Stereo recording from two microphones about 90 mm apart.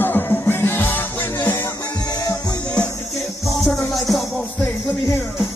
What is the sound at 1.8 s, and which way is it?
Music, 45° left (ahead or behind).